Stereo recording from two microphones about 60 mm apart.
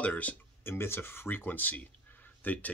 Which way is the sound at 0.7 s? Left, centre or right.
Left.